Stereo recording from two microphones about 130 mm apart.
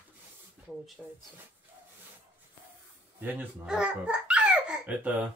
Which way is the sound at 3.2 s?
15° right (ahead or behind).